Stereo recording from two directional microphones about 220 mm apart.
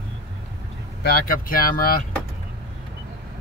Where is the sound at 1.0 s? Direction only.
40° left (ahead or behind).